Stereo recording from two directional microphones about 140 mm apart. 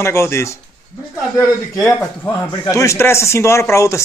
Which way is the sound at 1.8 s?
20° left (ahead or behind).